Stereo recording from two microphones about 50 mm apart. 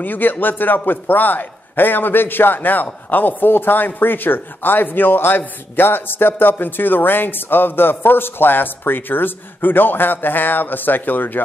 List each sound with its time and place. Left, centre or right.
0.0 s a man's voice: left